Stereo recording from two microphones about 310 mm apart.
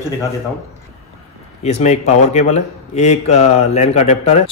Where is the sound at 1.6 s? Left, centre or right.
Left.